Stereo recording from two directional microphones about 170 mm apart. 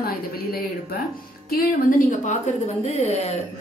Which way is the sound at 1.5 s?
50° left (ahead or behind).